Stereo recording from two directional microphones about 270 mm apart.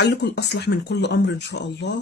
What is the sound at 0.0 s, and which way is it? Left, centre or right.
Speech, left.